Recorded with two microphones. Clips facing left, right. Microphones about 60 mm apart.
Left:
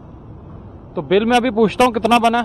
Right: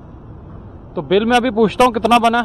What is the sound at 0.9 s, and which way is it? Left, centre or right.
Speech, left.